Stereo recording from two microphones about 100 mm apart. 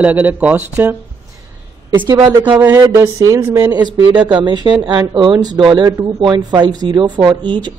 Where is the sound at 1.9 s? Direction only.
45° right (ahead or behind).